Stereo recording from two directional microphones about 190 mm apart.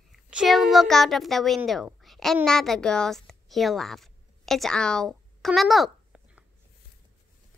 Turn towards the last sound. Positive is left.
turn(degrees=-5)  # may be behind; listen again after turning